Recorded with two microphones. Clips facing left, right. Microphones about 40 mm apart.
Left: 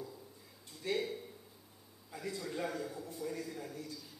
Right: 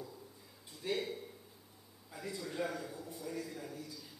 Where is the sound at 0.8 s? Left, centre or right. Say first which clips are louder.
Left 1 dB; centre.